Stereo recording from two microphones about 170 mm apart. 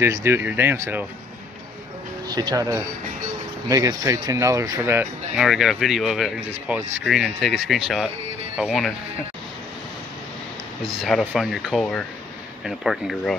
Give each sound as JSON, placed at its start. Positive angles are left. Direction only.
{"t": 0.0, "sound": "speech", "side_deg": -15}
{"t": 2.2, "sound": "speech", "side_deg": -25}
{"t": 5.3, "sound": "speech", "side_deg": -5}
{"t": 8.2, "sound": "music", "side_deg": -40}
{"t": 8.5, "sound": "speech", "side_deg": 0}
{"t": 10.8, "sound": "speech", "side_deg": 0}